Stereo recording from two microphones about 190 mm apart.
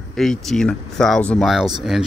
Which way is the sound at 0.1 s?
Centre (ahead or behind).